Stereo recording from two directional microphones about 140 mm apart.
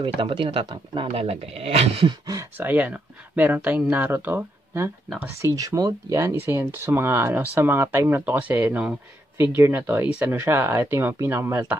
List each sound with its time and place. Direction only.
0.0 s speech: 35° right (ahead or behind)
2.5 s speech: 15° right (ahead or behind)